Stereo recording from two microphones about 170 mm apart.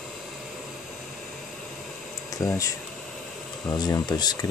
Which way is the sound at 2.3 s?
20° left (ahead or behind).